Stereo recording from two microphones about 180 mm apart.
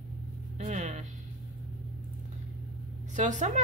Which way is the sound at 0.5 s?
40° right (ahead or behind).